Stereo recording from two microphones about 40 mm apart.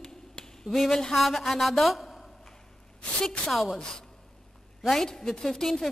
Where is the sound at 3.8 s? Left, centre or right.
Centre.